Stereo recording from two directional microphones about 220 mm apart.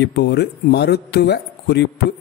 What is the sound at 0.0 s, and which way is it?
A man's voice, 50° left (ahead or behind).